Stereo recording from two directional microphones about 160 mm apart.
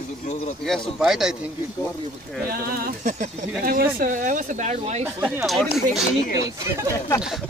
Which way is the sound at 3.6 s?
70° right (ahead or behind).